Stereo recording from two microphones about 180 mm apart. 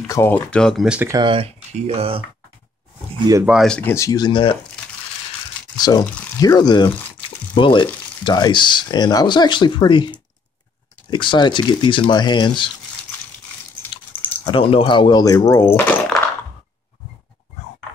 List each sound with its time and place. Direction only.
0.1 s speech: 10° left (ahead or behind); by 1.1 s 5° right (ahead or behind)
1.1 s speech: 30° right (ahead or behind)
3.4 s speech: centre (ahead or behind); by 4.6 s 30° left (ahead or behind)
5.8 s a sound: 20° left (ahead or behind)
6.4 s speech: 20° left (ahead or behind)
14.4 s speech: 30° left (ahead or behind); by 16.1 s 10° left (ahead or behind)